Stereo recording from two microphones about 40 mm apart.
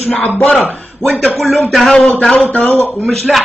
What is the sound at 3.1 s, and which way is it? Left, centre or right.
Speech, centre.